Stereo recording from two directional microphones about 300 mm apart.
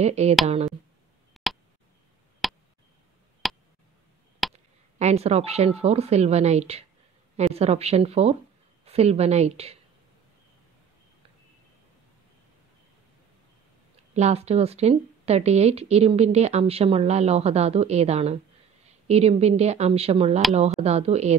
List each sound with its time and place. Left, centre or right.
0.0 s speech: right
1.3 s tick: centre
2.4 s a sound: centre
4.9 s speech: right
14.1 s speech: right